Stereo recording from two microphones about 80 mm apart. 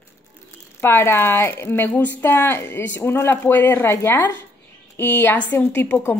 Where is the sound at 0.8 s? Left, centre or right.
Left.